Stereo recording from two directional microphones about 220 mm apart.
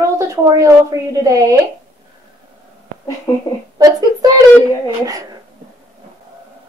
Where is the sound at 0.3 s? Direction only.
15° right (ahead or behind).